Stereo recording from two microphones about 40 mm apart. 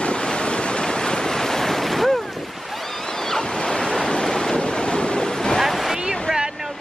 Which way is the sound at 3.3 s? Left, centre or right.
Centre.